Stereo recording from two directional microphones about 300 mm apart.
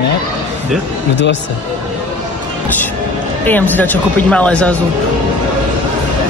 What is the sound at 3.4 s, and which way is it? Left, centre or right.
Speech, centre.